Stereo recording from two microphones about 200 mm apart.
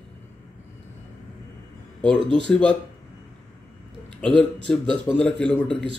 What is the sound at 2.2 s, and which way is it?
Speech, 25° right (ahead or behind).